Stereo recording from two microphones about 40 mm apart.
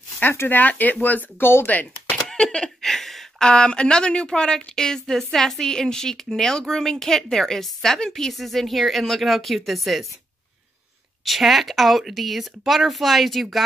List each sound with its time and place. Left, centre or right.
0.2 s speech: left
0.5 s speech: left
1.4 s speech: left
2.3 s speech: centre
2.8 s a sound: centre
3.3 s a woman's voice: left; by 10.0 s centre
11.2 s a woman's voice: centre